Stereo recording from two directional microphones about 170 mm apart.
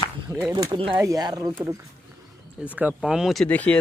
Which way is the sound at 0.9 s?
20° right (ahead or behind).